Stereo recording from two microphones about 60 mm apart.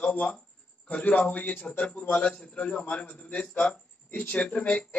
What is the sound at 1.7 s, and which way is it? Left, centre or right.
A man's voice, centre.